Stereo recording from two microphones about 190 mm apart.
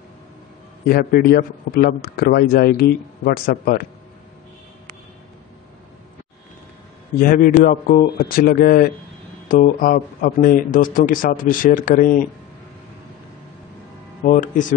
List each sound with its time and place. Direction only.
0.8 s a man's voice: 55° left (ahead or behind)
7.2 s a man's voice: 50° left (ahead or behind)
14.2 s a man's voice: 45° left (ahead or behind)